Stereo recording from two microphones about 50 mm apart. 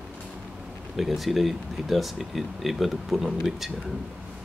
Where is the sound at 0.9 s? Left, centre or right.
Centre.